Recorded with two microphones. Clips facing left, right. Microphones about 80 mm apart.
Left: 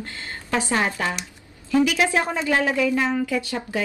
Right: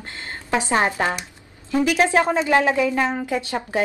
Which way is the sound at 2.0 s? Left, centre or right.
Right.